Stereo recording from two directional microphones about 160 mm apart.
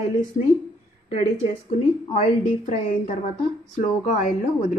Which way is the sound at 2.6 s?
55° left (ahead or behind).